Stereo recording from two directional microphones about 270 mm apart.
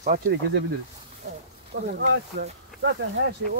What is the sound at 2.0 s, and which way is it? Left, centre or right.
Speech, right.